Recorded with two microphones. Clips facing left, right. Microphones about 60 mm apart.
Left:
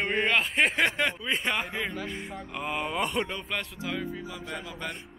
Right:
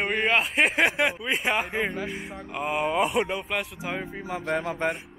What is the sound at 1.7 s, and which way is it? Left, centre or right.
Speech, right.